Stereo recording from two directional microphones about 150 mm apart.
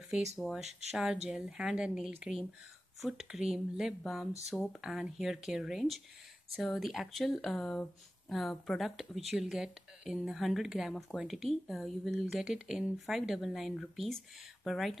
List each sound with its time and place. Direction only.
0.4 s speech: centre (ahead or behind)
0.7 s speech: 45° right (ahead or behind)
0.9 s speech: 5° right (ahead or behind)